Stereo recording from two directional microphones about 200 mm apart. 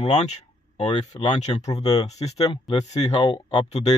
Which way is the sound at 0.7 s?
25° left (ahead or behind).